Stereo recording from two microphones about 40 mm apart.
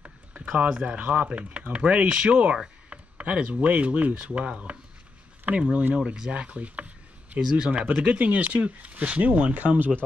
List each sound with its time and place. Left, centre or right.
0.5 s speech: right
0.9 s speech: right
2.9 s a sound: right
3.5 s speech: right
4.1 s speech: right
7.3 s speech: right